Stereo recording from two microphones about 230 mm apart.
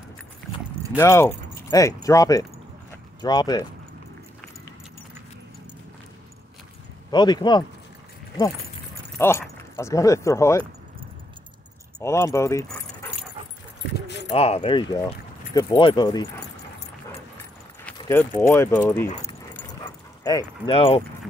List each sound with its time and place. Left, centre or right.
0.9 s speech: centre
7.1 s speech: centre
9.2 s speech: centre
12.0 s speech: centre
14.3 s speech: left
17.9 s keys jangling: centre
18.5 s speech: centre
19.0 s speech: left
19.8 s dog: centre